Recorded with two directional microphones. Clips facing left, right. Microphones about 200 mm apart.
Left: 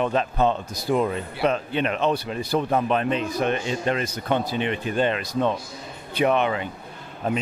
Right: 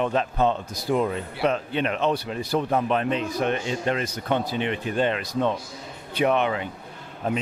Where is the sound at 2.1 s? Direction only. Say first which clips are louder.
Left 1 dB; 30° left (ahead or behind).